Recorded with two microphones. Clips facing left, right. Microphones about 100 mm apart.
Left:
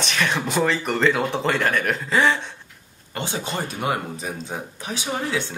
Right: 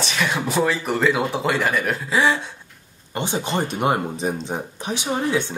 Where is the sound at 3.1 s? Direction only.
20° right (ahead or behind).